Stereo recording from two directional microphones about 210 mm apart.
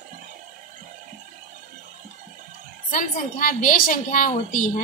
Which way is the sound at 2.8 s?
40° left (ahead or behind).